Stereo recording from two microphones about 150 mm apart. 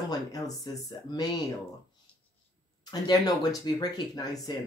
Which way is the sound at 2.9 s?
25° left (ahead or behind).